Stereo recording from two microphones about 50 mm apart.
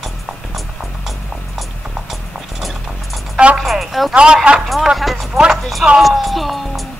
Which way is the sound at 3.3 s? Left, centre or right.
Right.